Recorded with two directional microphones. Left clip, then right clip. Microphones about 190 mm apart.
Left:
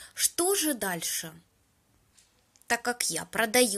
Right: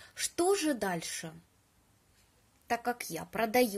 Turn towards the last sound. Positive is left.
turn(degrees=0)  # may be behind; listen again after turning